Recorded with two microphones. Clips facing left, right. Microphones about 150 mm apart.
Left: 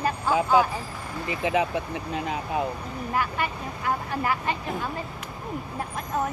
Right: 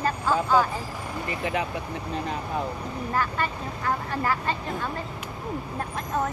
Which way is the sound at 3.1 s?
15° left (ahead or behind).